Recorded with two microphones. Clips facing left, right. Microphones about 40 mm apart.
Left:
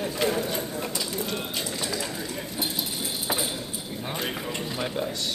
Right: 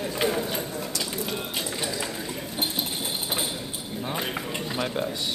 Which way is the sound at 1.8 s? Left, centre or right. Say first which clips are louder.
Even; centre.